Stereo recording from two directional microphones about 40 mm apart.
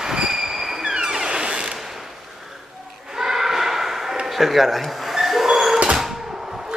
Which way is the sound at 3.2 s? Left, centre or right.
Centre.